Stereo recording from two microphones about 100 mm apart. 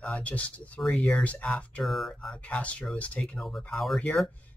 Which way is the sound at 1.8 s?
Centre (ahead or behind).